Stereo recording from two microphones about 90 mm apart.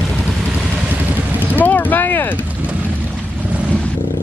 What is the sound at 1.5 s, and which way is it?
Boat, 20° left (ahead or behind).